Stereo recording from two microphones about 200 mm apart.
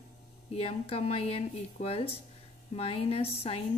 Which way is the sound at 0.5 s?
30° left (ahead or behind).